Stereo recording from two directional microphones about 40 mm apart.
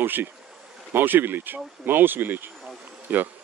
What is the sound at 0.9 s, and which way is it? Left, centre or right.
Speech, right.